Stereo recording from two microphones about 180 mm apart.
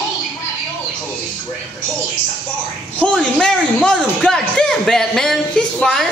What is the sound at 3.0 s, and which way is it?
A man's voice, 5° left (ahead or behind).